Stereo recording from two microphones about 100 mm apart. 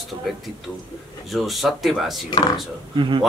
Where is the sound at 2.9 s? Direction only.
55° right (ahead or behind).